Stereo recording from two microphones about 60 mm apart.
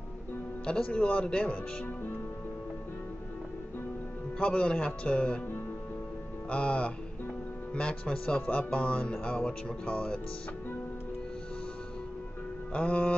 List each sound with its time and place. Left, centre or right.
0.7 s a man's voice: centre
4.4 s a man's voice: centre
6.5 s a man's voice: centre
9.1 s speech: centre
12.7 s a man's voice: left